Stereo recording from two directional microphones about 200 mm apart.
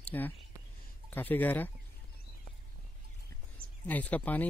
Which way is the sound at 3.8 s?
5° left (ahead or behind).